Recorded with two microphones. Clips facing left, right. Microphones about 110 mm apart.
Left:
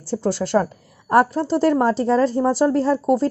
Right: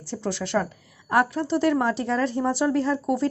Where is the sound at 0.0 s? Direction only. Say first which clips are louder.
Left 7 dB; 35° left (ahead or behind).